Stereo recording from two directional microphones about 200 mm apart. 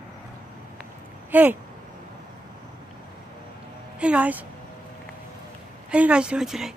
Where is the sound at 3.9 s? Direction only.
5° right (ahead or behind).